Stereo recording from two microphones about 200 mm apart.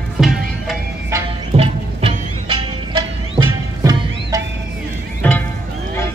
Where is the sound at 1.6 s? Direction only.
30° right (ahead or behind).